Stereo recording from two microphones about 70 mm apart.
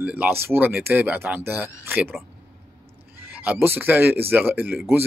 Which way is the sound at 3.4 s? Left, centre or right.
Right.